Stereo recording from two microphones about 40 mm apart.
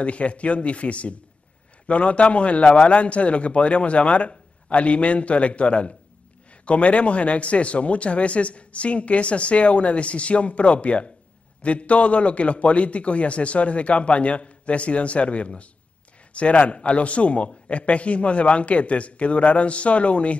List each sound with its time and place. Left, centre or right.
0.0 s speech: left